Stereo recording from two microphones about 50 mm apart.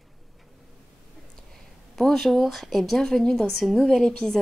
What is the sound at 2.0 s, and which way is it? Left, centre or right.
A woman's voice, centre.